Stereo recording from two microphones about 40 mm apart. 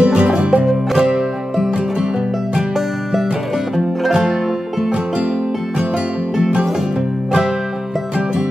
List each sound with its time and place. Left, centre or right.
0.0 s music: right
3.7 s music: centre